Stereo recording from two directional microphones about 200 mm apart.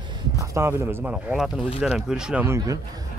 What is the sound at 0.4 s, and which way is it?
Speech, 10° right (ahead or behind).